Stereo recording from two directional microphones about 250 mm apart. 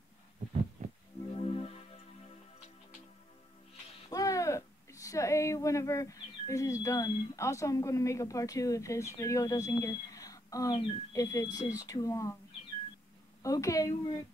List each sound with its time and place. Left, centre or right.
0.8 s music: right
1.3 s music: left
4.1 s speech: centre
13.4 s a woman's voice: centre